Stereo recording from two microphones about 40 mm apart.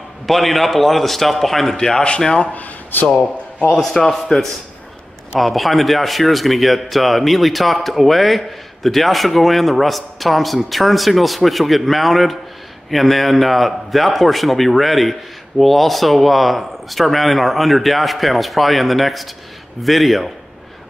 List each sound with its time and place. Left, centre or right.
0.3 s a man's voice: centre
1.8 s speech: centre
4.1 s a man's voice: centre